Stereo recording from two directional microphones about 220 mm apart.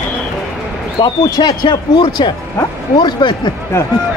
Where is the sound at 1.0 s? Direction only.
20° left (ahead or behind).